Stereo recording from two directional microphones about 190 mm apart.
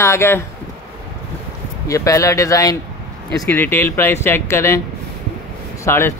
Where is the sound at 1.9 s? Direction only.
15° left (ahead or behind).